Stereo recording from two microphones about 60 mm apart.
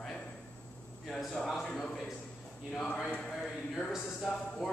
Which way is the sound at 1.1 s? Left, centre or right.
Centre.